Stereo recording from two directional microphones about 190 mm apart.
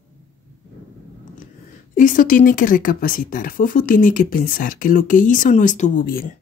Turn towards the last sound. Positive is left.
turn(degrees=50)  # may be behind; listen again after turning